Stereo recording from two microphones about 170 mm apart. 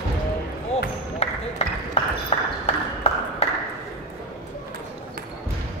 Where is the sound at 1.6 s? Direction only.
40° left (ahead or behind).